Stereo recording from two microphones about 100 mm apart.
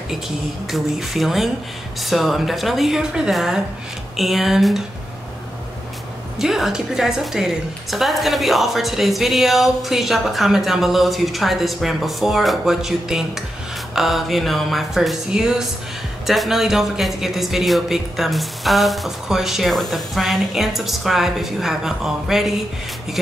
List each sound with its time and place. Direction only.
0.7 s a woman's voice: centre (ahead or behind)
6.3 s a woman's voice: 5° right (ahead or behind)